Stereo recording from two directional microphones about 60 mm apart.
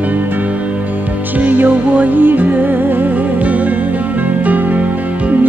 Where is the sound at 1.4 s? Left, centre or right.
Right.